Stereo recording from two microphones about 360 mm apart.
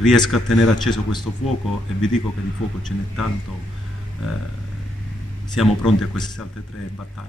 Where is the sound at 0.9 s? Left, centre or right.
Centre.